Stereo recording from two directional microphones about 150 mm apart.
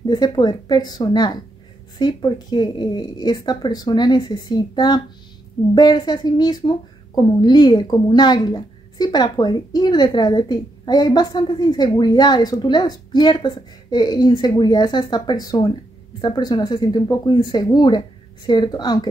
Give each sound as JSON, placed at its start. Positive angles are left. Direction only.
{"t": 0.0, "sound": "speech", "side_deg": 30}